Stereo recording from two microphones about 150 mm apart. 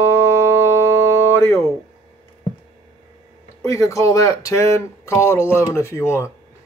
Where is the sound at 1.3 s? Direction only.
15° left (ahead or behind).